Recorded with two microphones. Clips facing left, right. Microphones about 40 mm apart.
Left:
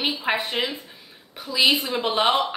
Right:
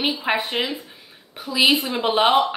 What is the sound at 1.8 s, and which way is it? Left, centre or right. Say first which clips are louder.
Speech: right 1 dB; right.